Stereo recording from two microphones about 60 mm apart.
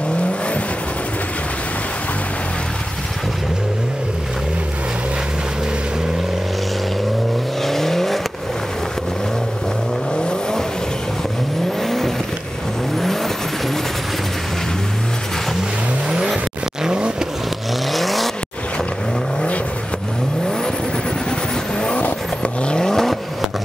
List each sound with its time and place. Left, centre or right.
7.6 s vehicle: centre
10.1 s vehicle: centre
11.8 s vehicle: centre
16.1 s vehicle: centre
17.9 s vehicle: centre
21.7 s vehicle: centre